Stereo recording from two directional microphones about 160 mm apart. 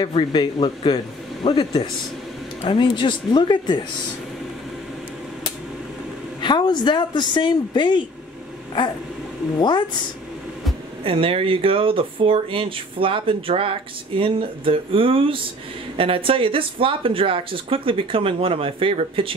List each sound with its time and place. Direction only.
0.0 s speech: 30° left (ahead or behind)
6.4 s speech: 25° left (ahead or behind)
9.6 s speech: 25° left (ahead or behind)
11.1 s speech: 35° right (ahead or behind)